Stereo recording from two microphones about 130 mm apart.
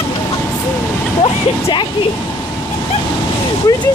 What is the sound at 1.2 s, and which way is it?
Speech, 40° left (ahead or behind).